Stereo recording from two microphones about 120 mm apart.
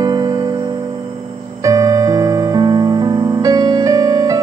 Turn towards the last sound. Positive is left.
turn(degrees=-30)  # may be behind; listen again after turning